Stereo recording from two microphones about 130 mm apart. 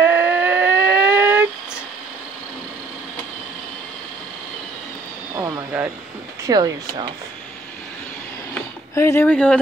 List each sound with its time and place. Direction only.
0.0 s a sound: 15° right (ahead or behind)
6.4 s speech: 35° right (ahead or behind)
8.9 s speech: 20° left (ahead or behind)